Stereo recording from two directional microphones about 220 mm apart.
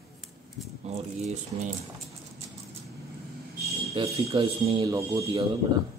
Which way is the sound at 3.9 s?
25° right (ahead or behind).